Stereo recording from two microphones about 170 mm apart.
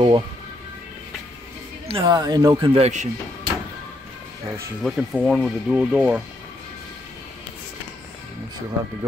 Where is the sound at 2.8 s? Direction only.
40° right (ahead or behind).